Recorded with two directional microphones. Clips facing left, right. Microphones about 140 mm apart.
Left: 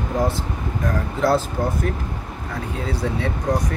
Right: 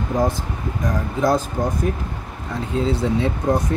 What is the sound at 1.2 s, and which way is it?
Speech, 15° right (ahead or behind).